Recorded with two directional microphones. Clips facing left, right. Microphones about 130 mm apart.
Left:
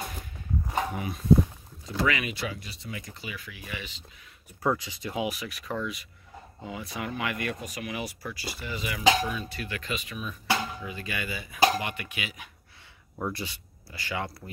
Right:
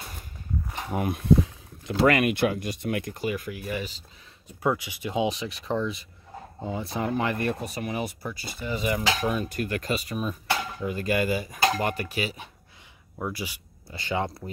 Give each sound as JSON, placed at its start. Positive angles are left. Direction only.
{"t": 0.9, "sound": "a sound", "side_deg": -60}
{"t": 2.0, "sound": "speech", "side_deg": -55}
{"t": 4.6, "sound": "speech", "side_deg": -15}
{"t": 13.2, "sound": "speech", "side_deg": -10}
{"t": 13.8, "sound": "speech", "side_deg": -25}